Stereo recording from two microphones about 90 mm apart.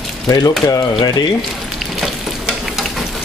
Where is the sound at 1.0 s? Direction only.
50° left (ahead or behind).